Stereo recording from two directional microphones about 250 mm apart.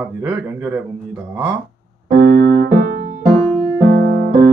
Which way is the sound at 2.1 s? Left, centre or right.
Right.